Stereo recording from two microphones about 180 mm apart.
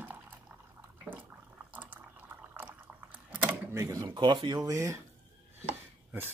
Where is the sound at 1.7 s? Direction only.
10° right (ahead or behind); by 4.6 s 25° right (ahead or behind).